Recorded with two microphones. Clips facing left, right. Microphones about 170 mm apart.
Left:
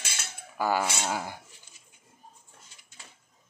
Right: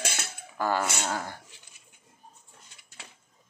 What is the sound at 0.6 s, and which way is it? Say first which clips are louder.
Speech: even; 10° left (ahead or behind).